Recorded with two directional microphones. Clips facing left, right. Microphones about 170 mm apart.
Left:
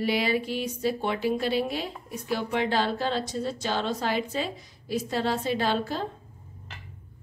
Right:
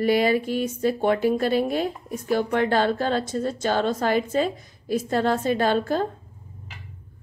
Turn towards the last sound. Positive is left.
turn(degrees=-50)  # may be behind; listen again after turning